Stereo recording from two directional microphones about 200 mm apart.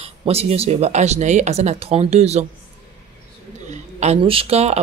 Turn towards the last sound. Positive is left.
turn(degrees=-30)  # may be behind; listen again after turning